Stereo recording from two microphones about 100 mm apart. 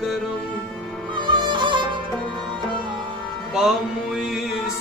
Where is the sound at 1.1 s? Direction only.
50° right (ahead or behind).